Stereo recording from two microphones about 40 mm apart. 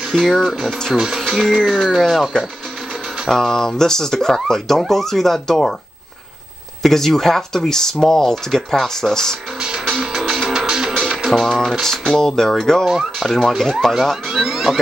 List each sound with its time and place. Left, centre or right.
0.1 s speech: centre
1.8 s speech: centre
2.3 s speech: left
3.3 s speech: centre
6.8 s speech: centre
10.1 s music: centre
10.5 s music: centre
11.1 s speech: centre
11.8 s speech: centre
12.8 s speech: centre
14.3 s vehicle: centre